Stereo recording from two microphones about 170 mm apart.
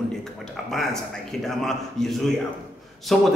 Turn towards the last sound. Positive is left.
turn(degrees=0)  # may be behind; listen again after turning